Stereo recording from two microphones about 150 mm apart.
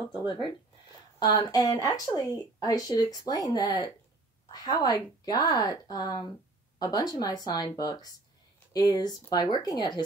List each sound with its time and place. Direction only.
1.2 s speech: 25° left (ahead or behind)